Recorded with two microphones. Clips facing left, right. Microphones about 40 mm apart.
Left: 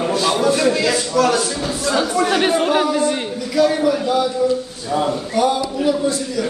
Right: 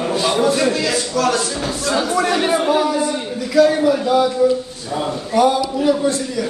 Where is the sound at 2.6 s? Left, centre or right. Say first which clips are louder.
Even; left.